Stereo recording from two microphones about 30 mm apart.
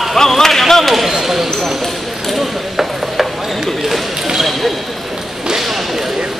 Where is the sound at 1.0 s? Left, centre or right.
Centre.